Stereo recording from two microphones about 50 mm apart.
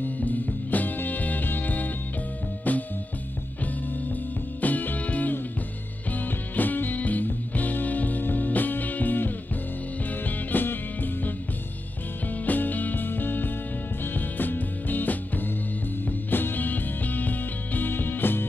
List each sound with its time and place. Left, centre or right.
0.0 s music: left
4.1 s music: left
12.4 s music: left